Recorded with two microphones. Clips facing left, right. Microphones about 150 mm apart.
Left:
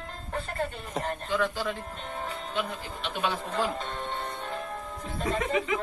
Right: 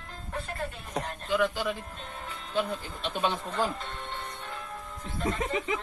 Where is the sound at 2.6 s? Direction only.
30° right (ahead or behind).